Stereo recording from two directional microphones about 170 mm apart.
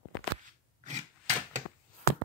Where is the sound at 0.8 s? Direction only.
45° right (ahead or behind).